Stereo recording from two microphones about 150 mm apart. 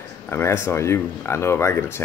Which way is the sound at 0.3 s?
15° left (ahead or behind).